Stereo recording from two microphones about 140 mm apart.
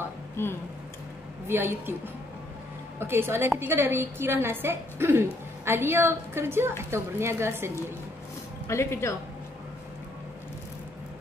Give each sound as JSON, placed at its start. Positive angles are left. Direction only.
{"t": 0.4, "sound": "speech", "side_deg": 20}
{"t": 1.5, "sound": "a woman's voice", "side_deg": -15}
{"t": 3.0, "sound": "a woman's voice", "side_deg": -15}
{"t": 8.6, "sound": "speech", "side_deg": 20}